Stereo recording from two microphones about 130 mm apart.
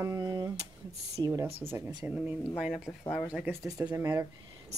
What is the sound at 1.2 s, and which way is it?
Speech, 30° right (ahead or behind).